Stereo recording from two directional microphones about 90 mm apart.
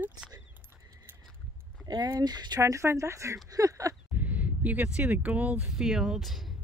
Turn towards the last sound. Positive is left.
turn(degrees=0)  # may be behind; listen again after turning